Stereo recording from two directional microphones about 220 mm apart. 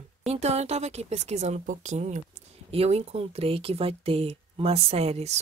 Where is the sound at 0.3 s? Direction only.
30° right (ahead or behind).